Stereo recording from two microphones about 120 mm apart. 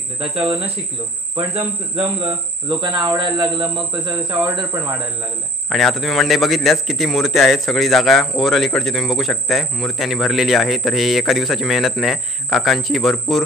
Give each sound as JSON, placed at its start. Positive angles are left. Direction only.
{"t": 0.2, "sound": "speech", "side_deg": -50}
{"t": 1.5, "sound": "a man's voice", "side_deg": -50}
{"t": 5.7, "sound": "a man's voice", "side_deg": 0}